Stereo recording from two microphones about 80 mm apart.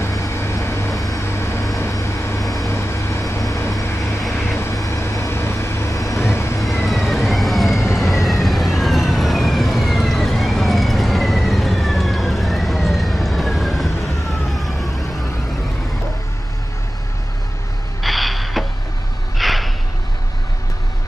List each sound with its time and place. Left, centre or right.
0.0 s vehicle: left
1.2 s vehicle: left
4.2 s vehicle: centre
4.7 s vehicle: left
6.9 s vehicle: centre
18.0 s a sound: centre